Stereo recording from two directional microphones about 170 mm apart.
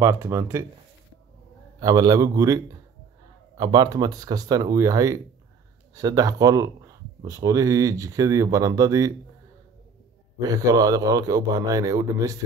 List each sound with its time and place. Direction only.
0.0 s speech: 15° right (ahead or behind)
1.8 s speech: 25° right (ahead or behind)
10.4 s speech: 20° right (ahead or behind)